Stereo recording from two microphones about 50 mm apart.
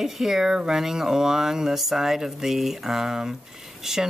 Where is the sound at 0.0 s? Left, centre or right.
Centre.